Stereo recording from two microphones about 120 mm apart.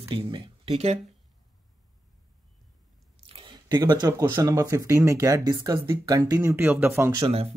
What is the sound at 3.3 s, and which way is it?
Speech, 40° right (ahead or behind).